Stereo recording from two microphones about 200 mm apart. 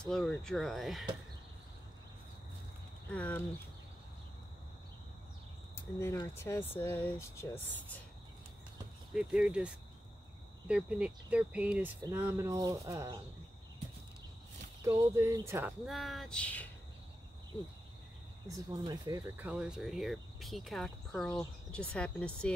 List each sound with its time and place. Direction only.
0.0 s speech: 5° left (ahead or behind)
3.1 s speech: 10° left (ahead or behind)
5.8 s speech: 10° left (ahead or behind)
9.1 s speech: 5° right (ahead or behind)
10.7 s speech: 5° right (ahead or behind)
14.9 s speech: 15° right (ahead or behind)
15.9 s speech: centre (ahead or behind)
18.5 s speech: 20° right (ahead or behind)
19.3 s speech: 5° right (ahead or behind)